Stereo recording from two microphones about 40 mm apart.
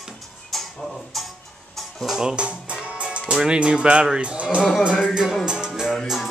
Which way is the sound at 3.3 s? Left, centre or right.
Centre.